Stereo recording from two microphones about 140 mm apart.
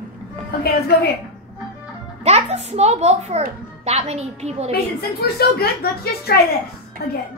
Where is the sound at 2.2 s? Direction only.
50° right (ahead or behind).